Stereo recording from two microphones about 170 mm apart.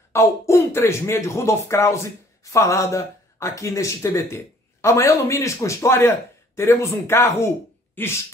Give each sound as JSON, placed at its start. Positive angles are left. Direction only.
{"t": 0.1, "sound": "a man's voice", "side_deg": 15}